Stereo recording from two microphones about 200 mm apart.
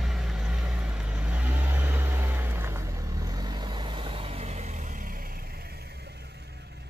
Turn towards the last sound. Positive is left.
turn(degrees=-35)  # may be behind; listen again after turning